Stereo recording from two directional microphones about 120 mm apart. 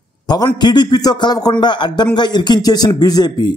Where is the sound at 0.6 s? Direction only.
35° left (ahead or behind).